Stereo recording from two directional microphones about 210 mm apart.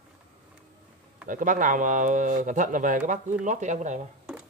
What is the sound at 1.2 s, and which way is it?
Speech, 40° right (ahead or behind).